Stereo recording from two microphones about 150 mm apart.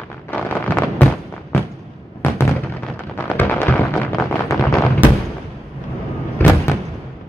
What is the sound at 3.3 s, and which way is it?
Music, 15° left (ahead or behind).